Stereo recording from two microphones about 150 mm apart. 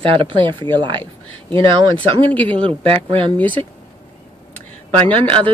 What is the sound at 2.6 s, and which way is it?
Speech, 40° right (ahead or behind).